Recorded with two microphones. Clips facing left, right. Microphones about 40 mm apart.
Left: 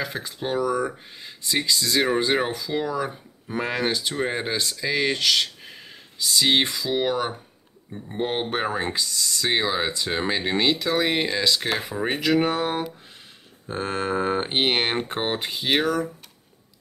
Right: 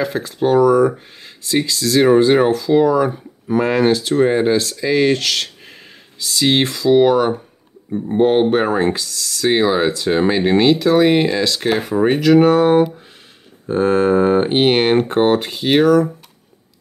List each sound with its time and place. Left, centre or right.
0.0 s speech: centre
9.5 s speech: centre